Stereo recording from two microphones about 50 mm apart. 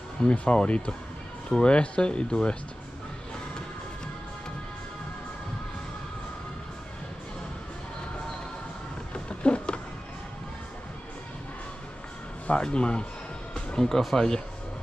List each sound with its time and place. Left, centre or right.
0.2 s speech: left
9.1 s a sound: left
12.4 s speech: left